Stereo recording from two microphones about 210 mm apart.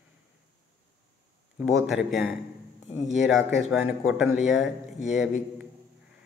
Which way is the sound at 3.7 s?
5° right (ahead or behind).